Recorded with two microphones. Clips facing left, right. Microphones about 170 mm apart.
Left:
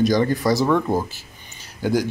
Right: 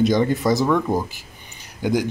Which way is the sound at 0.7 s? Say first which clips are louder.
Even; 10° left (ahead or behind).